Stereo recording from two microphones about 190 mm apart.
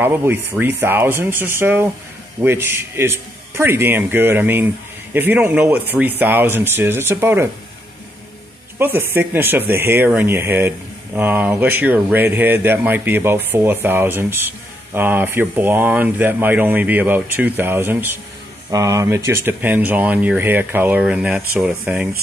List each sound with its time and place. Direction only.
0.0 s a man's voice: 10° right (ahead or behind)
8.7 s a man's voice: 10° right (ahead or behind)